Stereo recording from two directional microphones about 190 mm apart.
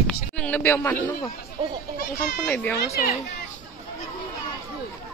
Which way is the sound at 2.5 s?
10° left (ahead or behind).